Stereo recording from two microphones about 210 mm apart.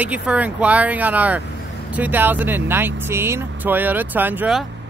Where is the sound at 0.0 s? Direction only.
5° right (ahead or behind).